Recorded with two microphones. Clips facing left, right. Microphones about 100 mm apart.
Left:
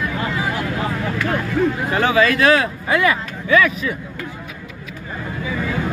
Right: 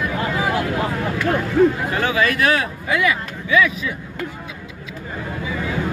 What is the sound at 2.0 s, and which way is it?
Speech, 30° left (ahead or behind).